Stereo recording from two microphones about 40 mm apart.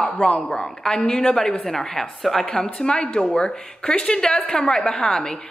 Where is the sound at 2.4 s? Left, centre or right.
Left.